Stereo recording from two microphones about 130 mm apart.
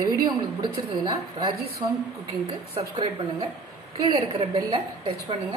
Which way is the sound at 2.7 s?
40° right (ahead or behind).